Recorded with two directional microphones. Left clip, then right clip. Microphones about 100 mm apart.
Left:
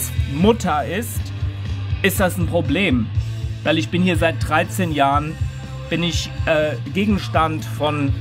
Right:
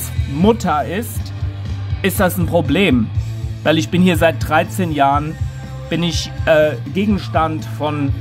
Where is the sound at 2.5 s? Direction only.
45° right (ahead or behind).